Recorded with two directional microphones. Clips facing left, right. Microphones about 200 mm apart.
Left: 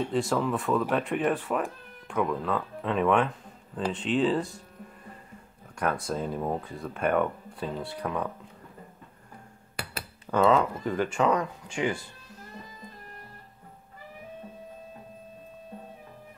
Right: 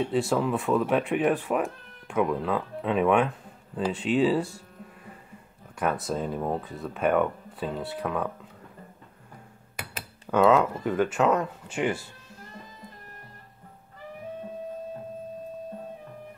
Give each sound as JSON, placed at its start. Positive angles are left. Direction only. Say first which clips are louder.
{"t": 0.0, "sound": "speech", "louder": "right 2 dB", "side_deg": -5}
{"t": 5.8, "sound": "speech", "louder": "right 1 dB", "side_deg": -5}
{"t": 10.3, "sound": "speech", "louder": "right 2 dB", "side_deg": -5}